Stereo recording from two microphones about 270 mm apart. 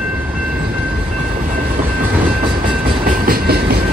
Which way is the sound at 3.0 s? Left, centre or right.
Right.